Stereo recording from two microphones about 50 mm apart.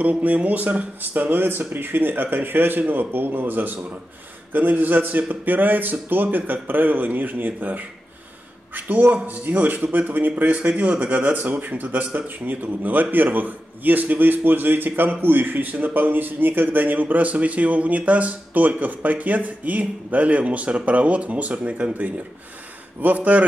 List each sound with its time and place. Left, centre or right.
0.0 s speech: right